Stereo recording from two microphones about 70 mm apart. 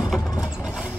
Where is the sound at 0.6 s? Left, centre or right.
Centre.